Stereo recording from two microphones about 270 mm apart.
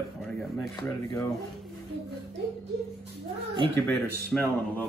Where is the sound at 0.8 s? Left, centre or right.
Centre.